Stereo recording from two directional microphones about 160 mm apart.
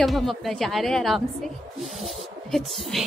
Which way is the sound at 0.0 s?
Centre (ahead or behind).